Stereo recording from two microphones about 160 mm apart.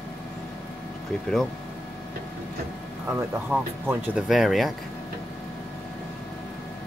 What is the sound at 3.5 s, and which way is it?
Speech, 10° right (ahead or behind).